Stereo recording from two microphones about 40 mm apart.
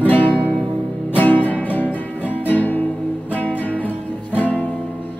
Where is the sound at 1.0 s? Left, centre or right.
Left.